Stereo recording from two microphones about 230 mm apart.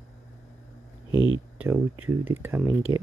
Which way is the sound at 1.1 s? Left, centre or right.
Left.